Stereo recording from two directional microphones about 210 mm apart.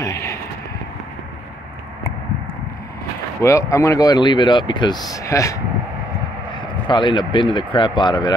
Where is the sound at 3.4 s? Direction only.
15° left (ahead or behind).